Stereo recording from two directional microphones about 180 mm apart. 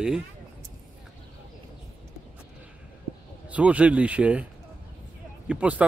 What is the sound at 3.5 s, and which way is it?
Speech, 5° right (ahead or behind).